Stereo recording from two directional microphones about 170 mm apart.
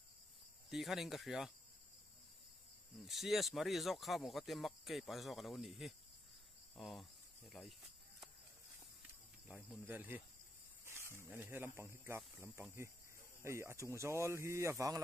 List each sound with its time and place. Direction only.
0.7 s speech: centre (ahead or behind)
3.0 s speech: centre (ahead or behind)
9.8 s speech: 10° right (ahead or behind)
13.4 s speech: 15° right (ahead or behind)